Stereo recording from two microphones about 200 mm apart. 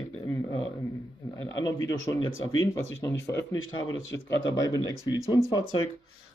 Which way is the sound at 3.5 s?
80° left.